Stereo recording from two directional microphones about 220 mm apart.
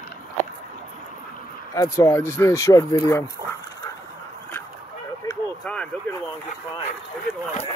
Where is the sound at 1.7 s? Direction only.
15° left (ahead or behind).